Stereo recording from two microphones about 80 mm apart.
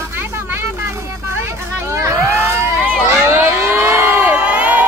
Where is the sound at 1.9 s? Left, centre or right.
Right.